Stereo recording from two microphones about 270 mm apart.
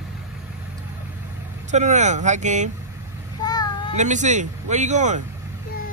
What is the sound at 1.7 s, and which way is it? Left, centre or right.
Speech, right.